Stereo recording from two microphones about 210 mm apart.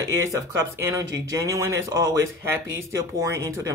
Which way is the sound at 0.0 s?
15° right (ahead or behind).